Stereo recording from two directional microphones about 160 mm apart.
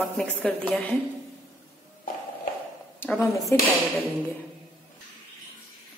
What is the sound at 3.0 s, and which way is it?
Speech, 10° left (ahead or behind).